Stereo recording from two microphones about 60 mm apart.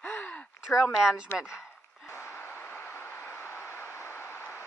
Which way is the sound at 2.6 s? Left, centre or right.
Left.